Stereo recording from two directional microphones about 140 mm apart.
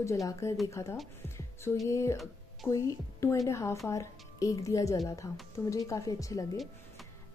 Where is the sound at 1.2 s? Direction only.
20° left (ahead or behind).